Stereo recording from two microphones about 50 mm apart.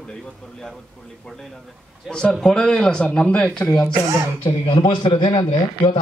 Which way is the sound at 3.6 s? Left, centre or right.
Left.